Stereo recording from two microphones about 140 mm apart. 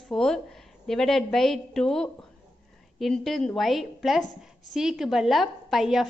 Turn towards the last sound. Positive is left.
turn(degrees=0)  # may be behind; listen again after turning